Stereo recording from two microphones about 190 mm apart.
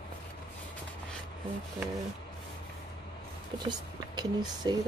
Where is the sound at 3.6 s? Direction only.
20° right (ahead or behind).